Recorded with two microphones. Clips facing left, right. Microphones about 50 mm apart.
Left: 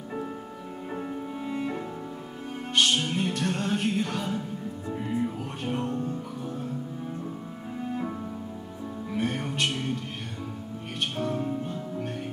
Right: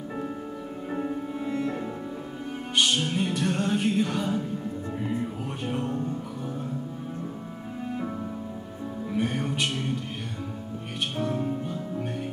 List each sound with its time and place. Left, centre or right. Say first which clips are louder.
0.9 s music: right 4 dB; centre
1.5 s music: right 2 dB; centre
9.1 s music: right 2 dB; centre
11.1 s music: right 2 dB; centre